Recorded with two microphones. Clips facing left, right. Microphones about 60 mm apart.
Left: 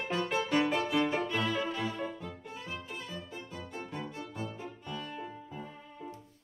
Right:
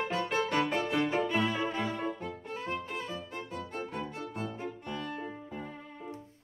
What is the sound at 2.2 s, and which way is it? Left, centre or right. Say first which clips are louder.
Music: right 5 dB; right.